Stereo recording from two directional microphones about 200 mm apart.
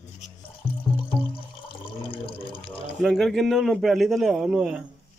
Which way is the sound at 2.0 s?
25° left (ahead or behind).